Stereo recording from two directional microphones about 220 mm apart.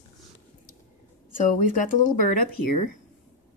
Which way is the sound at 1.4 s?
35° left (ahead or behind).